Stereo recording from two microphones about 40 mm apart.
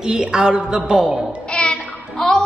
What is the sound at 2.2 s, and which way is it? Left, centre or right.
Music, centre.